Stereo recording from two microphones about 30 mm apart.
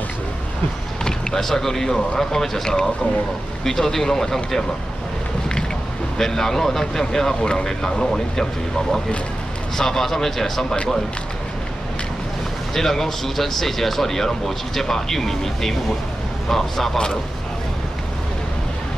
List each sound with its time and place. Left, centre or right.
1.0 s speech: centre
6.1 s speech: centre
9.8 s speech: centre
12.7 s speech: centre